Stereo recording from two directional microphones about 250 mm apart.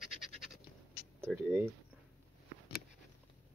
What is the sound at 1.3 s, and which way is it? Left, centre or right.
Speech, centre.